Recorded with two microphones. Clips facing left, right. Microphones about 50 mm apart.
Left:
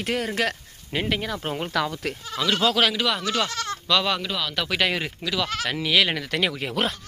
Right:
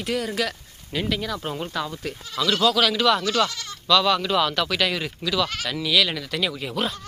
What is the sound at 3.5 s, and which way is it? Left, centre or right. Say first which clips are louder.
Speech: left 7 dB; left.